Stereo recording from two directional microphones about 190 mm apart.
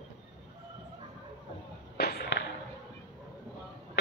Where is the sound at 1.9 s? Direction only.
60° left (ahead or behind).